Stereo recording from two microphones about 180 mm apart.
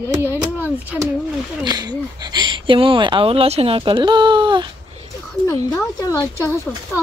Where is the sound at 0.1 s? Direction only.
10° right (ahead or behind).